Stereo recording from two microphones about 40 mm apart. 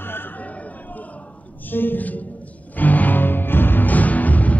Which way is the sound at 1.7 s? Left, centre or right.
Left.